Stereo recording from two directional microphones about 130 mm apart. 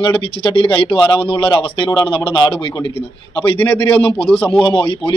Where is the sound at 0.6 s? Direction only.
40° left (ahead or behind).